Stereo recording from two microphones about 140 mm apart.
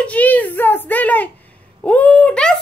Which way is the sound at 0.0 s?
10° left (ahead or behind).